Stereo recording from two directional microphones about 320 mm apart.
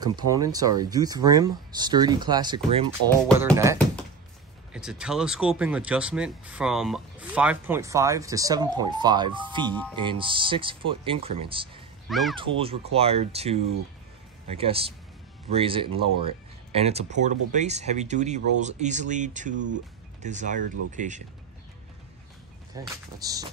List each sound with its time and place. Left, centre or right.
0.0 s speech: centre
3.3 s speech: centre
4.7 s speech: centre
12.1 s speech: centre
12.4 s speech: centre
22.8 s speech: centre